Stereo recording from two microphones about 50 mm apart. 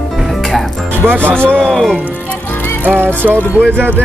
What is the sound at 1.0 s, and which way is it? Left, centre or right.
Speech, right.